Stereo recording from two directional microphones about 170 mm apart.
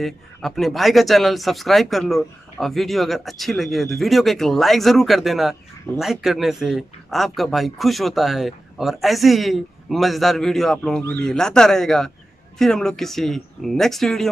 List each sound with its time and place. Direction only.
0.0 s speech: centre (ahead or behind)